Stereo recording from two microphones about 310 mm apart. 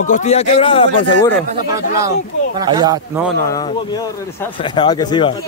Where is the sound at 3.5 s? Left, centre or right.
Centre.